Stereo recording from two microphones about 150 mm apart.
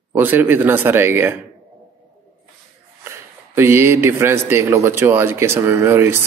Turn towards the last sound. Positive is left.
turn(degrees=-15)  # may be behind; listen again after turning